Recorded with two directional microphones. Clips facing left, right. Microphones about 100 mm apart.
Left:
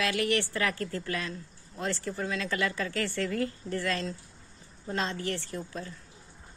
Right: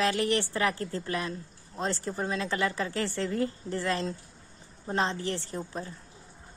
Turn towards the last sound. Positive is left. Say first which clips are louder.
# right 2 dB
turn(degrees=-25)  # may be behind; listen again after turning